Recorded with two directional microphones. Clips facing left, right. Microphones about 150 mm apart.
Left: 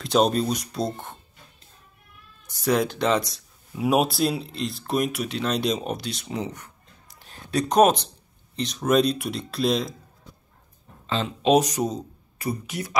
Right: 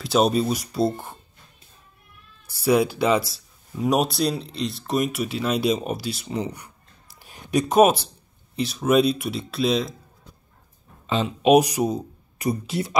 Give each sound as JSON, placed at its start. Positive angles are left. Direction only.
{"t": 0.0, "sound": "speech", "side_deg": -5}
{"t": 2.4, "sound": "speech", "side_deg": -10}
{"t": 7.2, "sound": "a sound", "side_deg": -10}
{"t": 8.5, "sound": "speech", "side_deg": -5}
{"t": 11.1, "sound": "speech", "side_deg": -15}
{"t": 12.6, "sound": "speech", "side_deg": -25}